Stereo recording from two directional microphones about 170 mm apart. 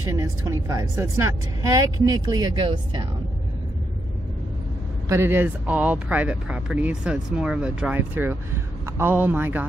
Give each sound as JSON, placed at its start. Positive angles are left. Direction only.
{"t": 0.0, "sound": "a woman's voice", "side_deg": -15}
{"t": 5.0, "sound": "speech", "side_deg": -15}